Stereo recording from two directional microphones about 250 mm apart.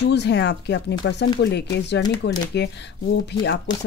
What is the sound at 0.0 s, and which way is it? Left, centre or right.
Speech, left.